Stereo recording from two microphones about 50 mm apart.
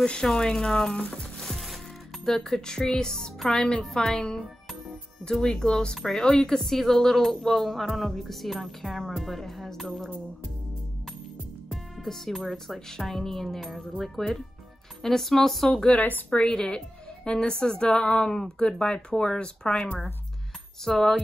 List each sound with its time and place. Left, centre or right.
0.0 s speech: centre
1.4 s music: centre
2.2 s speech: centre
11.7 s speech: centre